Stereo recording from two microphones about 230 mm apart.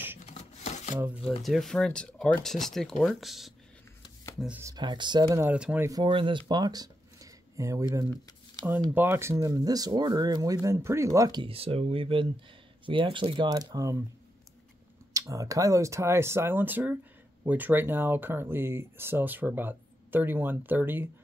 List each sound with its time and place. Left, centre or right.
0.2 s a sound: left
0.9 s speech: centre
15.1 s speech: centre